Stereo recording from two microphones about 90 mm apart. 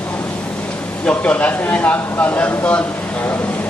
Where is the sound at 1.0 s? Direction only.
15° left (ahead or behind).